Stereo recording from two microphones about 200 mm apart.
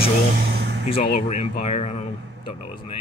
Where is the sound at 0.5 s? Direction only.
55° right (ahead or behind).